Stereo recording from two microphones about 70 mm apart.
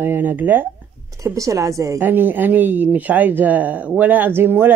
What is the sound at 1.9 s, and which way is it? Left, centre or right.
Speech, right.